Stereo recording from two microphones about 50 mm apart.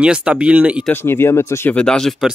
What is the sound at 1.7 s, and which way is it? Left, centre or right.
Speech, centre.